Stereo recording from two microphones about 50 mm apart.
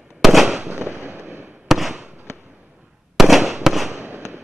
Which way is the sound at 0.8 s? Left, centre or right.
Right.